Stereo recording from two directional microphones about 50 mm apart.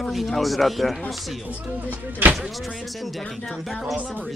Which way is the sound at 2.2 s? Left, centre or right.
Right.